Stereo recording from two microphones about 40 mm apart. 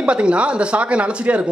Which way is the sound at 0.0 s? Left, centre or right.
Right.